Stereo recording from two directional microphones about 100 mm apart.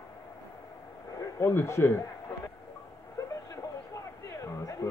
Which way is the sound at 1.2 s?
25° left (ahead or behind).